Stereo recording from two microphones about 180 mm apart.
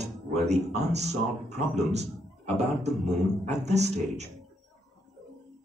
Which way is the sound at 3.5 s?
40° right (ahead or behind).